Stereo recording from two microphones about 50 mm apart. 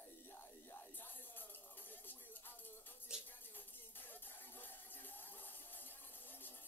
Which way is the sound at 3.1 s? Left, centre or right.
Centre.